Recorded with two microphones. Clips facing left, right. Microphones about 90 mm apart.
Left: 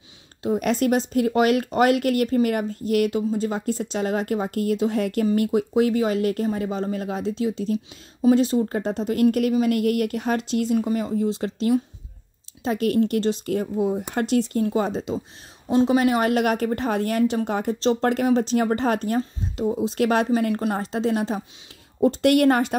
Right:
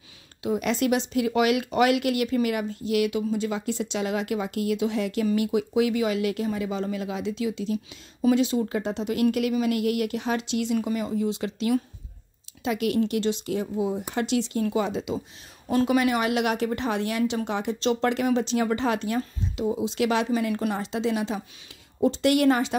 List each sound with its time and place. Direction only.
0.4 s speech: 40° left (ahead or behind)
15.7 s speech: 25° left (ahead or behind)
16.0 s speech: 40° left (ahead or behind)